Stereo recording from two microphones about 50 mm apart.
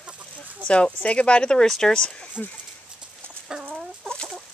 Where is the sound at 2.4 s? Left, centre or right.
Left.